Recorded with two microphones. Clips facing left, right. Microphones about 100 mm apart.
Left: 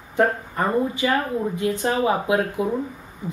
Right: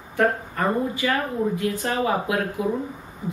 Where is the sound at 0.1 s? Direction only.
25° left (ahead or behind).